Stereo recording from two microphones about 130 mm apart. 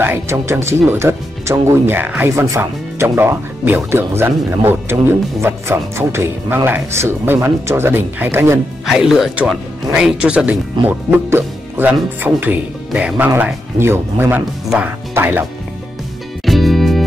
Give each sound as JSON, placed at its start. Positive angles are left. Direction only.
{"t": 0.0, "sound": "speech", "side_deg": -15}
{"t": 8.8, "sound": "speech", "side_deg": 0}
{"t": 16.4, "sound": "music", "side_deg": 0}